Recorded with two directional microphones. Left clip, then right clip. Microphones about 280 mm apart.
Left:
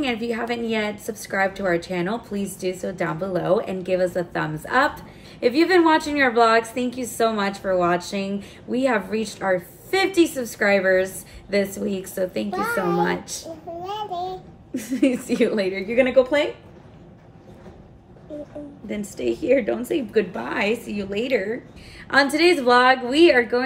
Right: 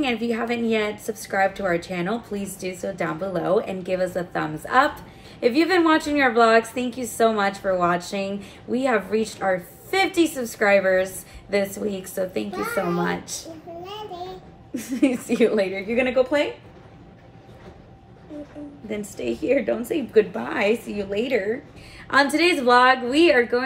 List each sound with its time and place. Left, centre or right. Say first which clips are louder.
0.0 s a woman's voice: right 1 dB; centre
13.8 s child singing: left 7 dB; centre
14.7 s a woman's voice: left 1 dB; centre
18.9 s a woman's voice: left 2 dB; centre